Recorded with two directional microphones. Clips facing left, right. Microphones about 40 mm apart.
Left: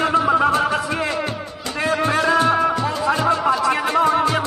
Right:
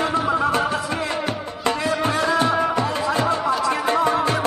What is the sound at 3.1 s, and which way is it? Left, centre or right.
Music, left.